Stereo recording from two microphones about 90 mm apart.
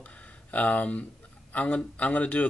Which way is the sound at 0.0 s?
15° left (ahead or behind).